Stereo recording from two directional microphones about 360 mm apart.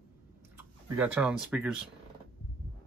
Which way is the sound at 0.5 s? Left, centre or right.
Centre.